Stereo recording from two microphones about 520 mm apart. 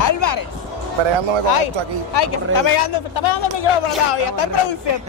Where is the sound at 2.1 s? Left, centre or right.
Left.